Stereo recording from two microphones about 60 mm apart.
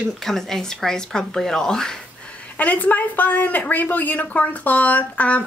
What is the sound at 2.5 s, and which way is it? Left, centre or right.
Speech, left.